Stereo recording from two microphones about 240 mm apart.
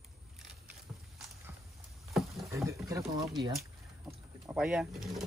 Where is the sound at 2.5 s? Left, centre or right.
Centre.